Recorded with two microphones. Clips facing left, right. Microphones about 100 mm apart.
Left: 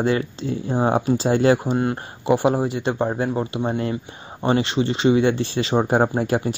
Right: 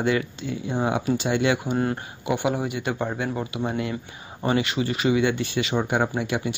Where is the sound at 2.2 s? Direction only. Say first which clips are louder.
Left 7 dB; 35° left (ahead or behind).